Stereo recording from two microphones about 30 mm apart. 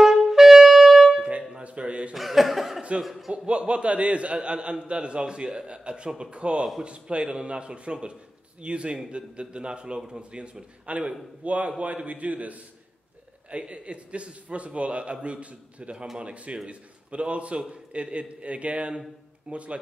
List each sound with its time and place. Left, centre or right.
0.3 s wind instrument: centre
1.6 s a sound: right
2.1 s chuckle: centre
3.0 s speech: centre
3.3 s a man's voice: right
5.2 s a man's voice: right
9.9 s speech: right
10.3 s a man's voice: right
10.9 s a man's voice: right
13.5 s a man's voice: right